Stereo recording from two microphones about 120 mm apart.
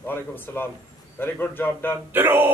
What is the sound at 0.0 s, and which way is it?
A man's voice, 15° left (ahead or behind).